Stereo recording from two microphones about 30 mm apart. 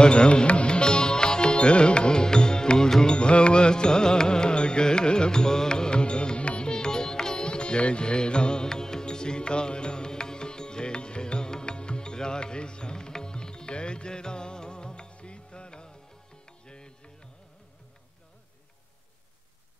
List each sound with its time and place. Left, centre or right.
0.0 s music: left
6.7 s music: left